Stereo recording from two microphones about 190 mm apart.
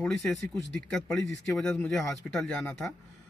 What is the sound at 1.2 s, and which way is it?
Speech, 15° left (ahead or behind).